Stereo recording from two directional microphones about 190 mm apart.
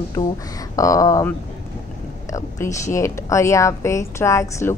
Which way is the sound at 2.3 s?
15° left (ahead or behind).